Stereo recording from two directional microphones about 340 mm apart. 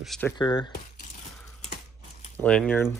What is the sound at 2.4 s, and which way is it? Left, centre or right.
Speech, centre.